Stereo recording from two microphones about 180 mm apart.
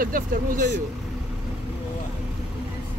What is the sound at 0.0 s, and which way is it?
Speech, 50° right (ahead or behind).